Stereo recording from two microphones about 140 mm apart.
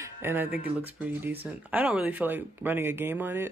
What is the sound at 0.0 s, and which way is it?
Speech, 15° right (ahead or behind).